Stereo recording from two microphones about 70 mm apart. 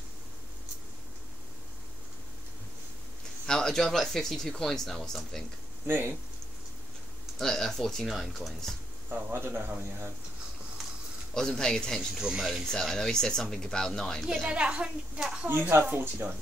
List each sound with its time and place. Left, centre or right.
3.4 s speech: centre
5.9 s speech: right
7.3 s speech: centre
9.1 s speech: right
11.3 s speech: centre
12.2 s speech: centre
12.6 s speech: centre
14.2 s a woman's voice: centre
15.9 s speech: right